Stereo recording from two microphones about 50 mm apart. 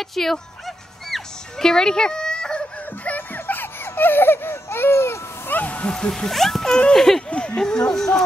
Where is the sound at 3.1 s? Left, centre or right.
Left.